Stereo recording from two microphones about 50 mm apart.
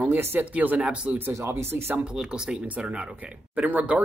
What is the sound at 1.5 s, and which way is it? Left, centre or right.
Speech, right.